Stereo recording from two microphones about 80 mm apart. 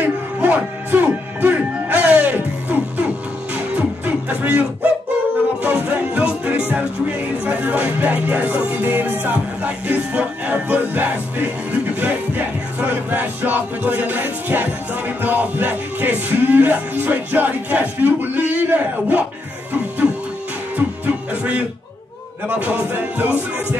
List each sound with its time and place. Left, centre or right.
0.0 s music: centre
4.3 s music: centre
20.7 s music: right